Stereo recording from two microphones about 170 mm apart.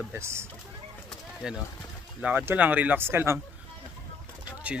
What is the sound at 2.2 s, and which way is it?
Speech, 10° right (ahead or behind).